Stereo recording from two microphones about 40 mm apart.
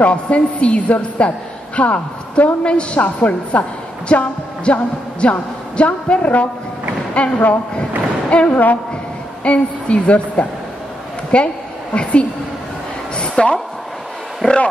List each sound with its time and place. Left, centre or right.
0.0 s a woman's voice: left
2.6 s a woman's voice: left
3.2 s a woman's voice: left
13.2 s a sound: left
14.4 s a woman's voice: left